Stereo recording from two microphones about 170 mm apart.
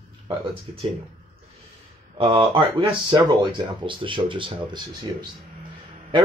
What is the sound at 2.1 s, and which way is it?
Speech, 30° right (ahead or behind).